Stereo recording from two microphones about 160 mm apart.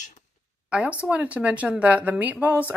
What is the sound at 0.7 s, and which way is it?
A woman's voice, 10° right (ahead or behind).